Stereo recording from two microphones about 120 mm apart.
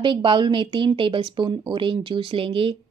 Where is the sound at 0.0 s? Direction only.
45° right (ahead or behind).